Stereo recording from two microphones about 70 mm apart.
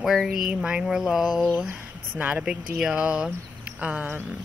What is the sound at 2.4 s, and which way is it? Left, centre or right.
A woman's voice, centre.